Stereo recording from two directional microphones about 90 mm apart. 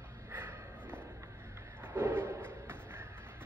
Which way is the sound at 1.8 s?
25° right (ahead or behind).